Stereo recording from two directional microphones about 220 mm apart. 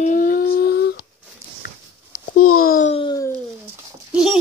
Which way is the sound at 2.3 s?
80° left.